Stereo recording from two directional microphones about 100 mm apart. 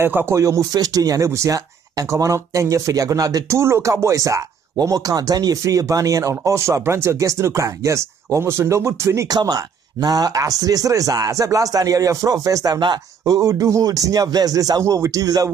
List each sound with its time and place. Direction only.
0.0 s speech: 20° right (ahead or behind)
0.4 s speech: 35° right (ahead or behind)
9.3 s speech: 40° right (ahead or behind)